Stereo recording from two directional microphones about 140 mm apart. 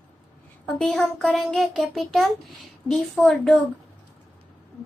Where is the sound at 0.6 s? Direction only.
5° left (ahead or behind).